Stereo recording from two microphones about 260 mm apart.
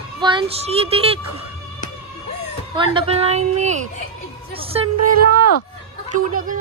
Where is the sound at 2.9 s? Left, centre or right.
Right.